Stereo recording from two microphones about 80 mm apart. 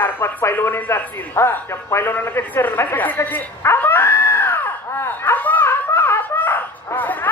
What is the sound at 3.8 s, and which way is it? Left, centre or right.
Screaming, left.